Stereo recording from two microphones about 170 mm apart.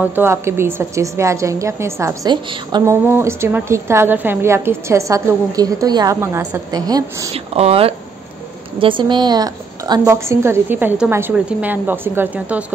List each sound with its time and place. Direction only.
0.0 s a woman's voice: 10° right (ahead or behind)
7.3 s a woman's voice: 35° right (ahead or behind); by 12.6 s 10° right (ahead or behind)